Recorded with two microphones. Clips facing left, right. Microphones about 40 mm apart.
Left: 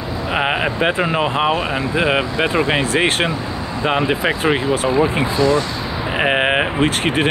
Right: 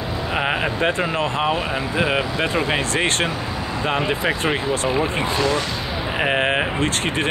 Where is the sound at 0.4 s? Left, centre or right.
Centre.